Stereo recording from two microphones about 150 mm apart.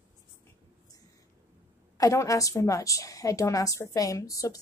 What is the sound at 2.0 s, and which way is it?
A woman's voice, 20° left (ahead or behind).